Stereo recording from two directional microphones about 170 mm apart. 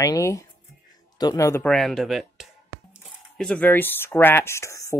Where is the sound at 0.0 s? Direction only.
20° left (ahead or behind).